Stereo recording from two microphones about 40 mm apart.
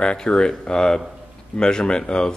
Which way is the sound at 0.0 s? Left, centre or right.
Left.